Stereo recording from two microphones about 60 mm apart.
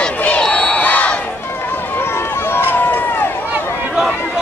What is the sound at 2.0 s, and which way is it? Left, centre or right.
Run, left.